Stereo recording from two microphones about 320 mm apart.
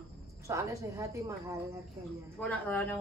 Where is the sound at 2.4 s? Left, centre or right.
Centre.